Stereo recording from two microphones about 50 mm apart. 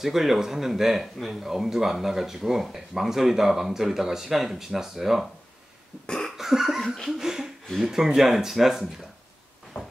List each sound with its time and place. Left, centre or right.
0.0 s speech: centre
6.0 s cough: centre
6.3 s cough: centre
7.1 s speech: centre